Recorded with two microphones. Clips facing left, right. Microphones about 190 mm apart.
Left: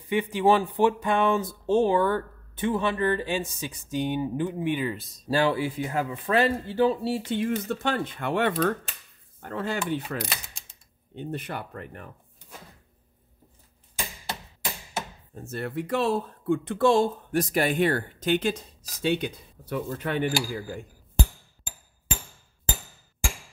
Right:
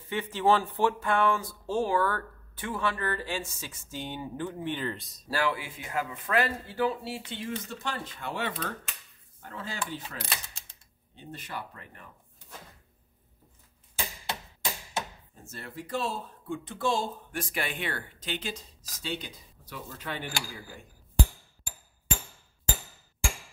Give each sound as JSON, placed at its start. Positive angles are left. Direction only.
{"t": 0.0, "sound": "speech", "side_deg": 15}
{"t": 5.3, "sound": "speech", "side_deg": 30}
{"t": 7.3, "sound": "speech", "side_deg": 55}
{"t": 15.4, "sound": "speech", "side_deg": 60}
{"t": 17.3, "sound": "speech", "side_deg": 40}